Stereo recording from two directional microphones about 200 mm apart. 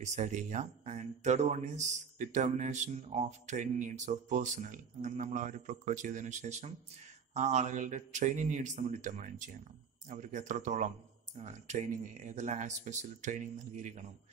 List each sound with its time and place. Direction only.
0.0 s speech: 35° right (ahead or behind)